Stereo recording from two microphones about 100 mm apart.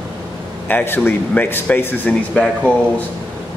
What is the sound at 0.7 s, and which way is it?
Speech, 20° left (ahead or behind).